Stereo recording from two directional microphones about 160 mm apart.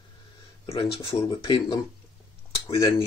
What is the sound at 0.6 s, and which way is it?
Speech, 35° left (ahead or behind).